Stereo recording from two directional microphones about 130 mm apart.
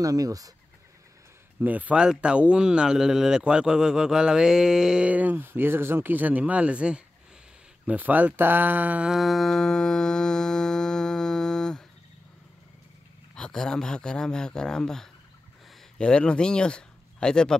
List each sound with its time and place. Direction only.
0.0 s speech: 25° right (ahead or behind)
1.6 s speech: 10° right (ahead or behind)
7.8 s a sound: 15° right (ahead or behind); by 11.8 s 5° left (ahead or behind)
13.3 s speech: 5° left (ahead or behind)